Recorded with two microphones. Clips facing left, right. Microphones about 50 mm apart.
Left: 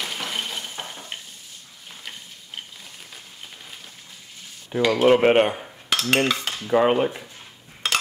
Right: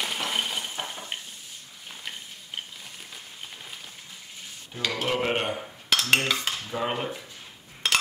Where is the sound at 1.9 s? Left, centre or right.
Centre.